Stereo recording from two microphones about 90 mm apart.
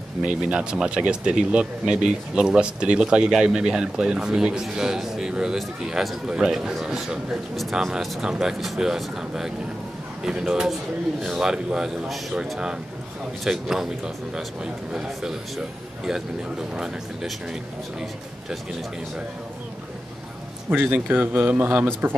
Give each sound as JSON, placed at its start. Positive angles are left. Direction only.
{"t": 0.2, "sound": "a man's voice", "side_deg": -10}
{"t": 16.7, "sound": "a man's voice", "side_deg": -5}
{"t": 20.7, "sound": "speech", "side_deg": -20}